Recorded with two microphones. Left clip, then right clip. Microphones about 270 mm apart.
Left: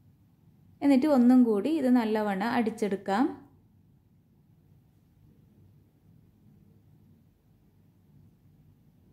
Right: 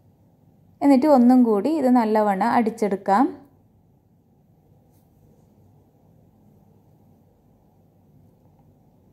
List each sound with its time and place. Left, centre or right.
0.7 s a woman's voice: centre